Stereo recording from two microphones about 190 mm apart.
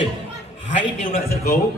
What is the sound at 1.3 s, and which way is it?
Speech, 55° left (ahead or behind).